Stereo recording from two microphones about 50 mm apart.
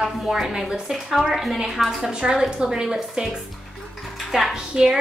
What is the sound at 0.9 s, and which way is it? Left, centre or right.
Speech, centre.